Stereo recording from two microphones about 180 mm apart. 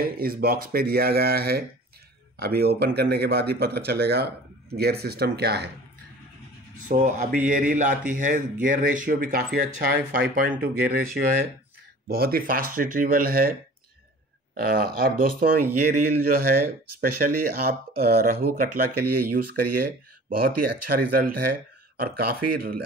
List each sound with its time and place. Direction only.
0.0 s speech: 55° right (ahead or behind)
6.9 s speech: 45° right (ahead or behind)
10.5 s speech: 10° right (ahead or behind)
10.8 s speech: 55° right (ahead or behind)